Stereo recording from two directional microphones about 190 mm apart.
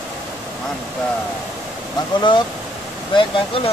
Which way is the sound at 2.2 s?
25° left (ahead or behind).